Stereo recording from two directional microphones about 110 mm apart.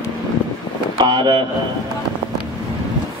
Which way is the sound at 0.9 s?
45° right (ahead or behind).